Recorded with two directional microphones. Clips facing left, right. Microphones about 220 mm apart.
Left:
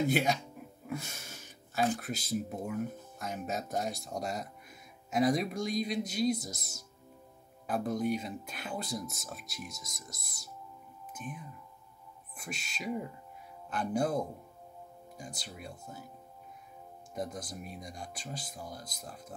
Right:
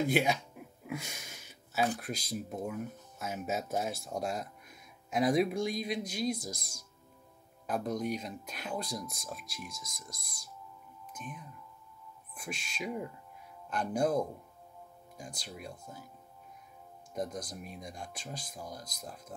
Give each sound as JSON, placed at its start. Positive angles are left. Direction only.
{"t": 0.1, "sound": "speech", "side_deg": -5}
{"t": 12.4, "sound": "speech", "side_deg": 0}
{"t": 15.1, "sound": "speech", "side_deg": 0}
{"t": 17.1, "sound": "speech", "side_deg": 0}